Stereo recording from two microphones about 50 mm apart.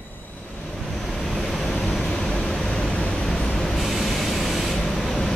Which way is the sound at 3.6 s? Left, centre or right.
Centre.